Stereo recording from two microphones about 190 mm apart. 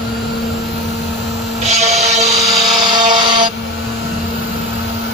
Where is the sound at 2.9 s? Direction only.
25° right (ahead or behind).